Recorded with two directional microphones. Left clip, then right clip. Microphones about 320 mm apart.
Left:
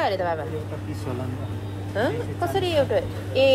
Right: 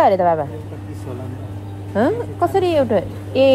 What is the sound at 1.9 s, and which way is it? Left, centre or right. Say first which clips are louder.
A woman's voice: right 7 dB; centre.